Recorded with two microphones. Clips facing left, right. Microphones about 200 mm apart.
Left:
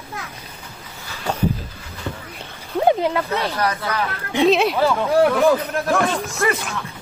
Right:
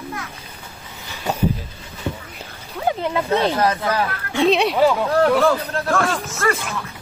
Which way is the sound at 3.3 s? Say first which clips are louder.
Right 4 dB; 20° right (ahead or behind).